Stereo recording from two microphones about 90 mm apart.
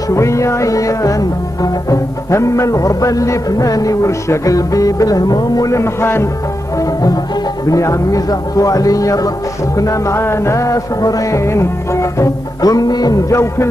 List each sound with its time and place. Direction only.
0.1 s music: 35° left (ahead or behind)
6.8 s music: 40° left (ahead or behind)